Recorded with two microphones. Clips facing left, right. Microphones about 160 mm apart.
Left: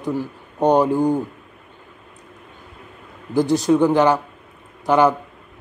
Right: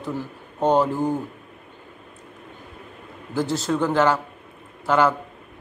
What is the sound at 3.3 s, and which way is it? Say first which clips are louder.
A man's voice: left 7 dB; 15° left (ahead or behind).